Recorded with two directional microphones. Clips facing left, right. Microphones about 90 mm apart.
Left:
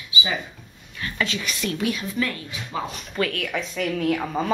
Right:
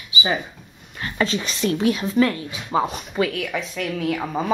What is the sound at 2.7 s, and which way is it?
Speech, 35° right (ahead or behind).